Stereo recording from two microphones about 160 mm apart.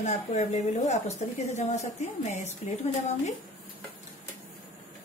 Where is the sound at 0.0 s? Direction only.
45° left (ahead or behind).